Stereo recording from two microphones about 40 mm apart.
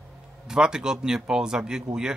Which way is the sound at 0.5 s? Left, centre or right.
Centre.